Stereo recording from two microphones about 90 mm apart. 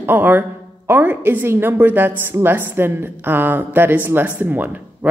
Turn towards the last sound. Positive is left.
turn(degrees=-20)  # may be behind; listen again after turning